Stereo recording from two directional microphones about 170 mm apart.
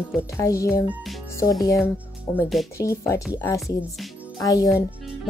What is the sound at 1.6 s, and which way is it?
Speech, 15° left (ahead or behind).